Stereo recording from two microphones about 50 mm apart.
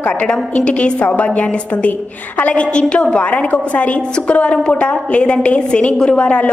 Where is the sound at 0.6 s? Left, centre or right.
Left.